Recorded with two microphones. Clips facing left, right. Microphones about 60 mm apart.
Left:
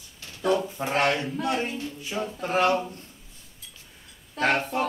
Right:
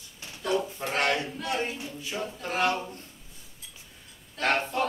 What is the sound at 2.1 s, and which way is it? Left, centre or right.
Speech, left.